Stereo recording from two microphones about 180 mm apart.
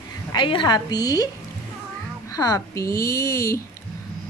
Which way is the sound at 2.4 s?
20° left (ahead or behind).